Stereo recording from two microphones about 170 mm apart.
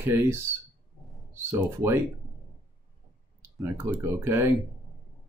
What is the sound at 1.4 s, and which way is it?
Speech, 15° right (ahead or behind).